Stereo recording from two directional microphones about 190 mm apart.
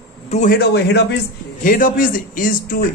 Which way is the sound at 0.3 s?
40° left (ahead or behind).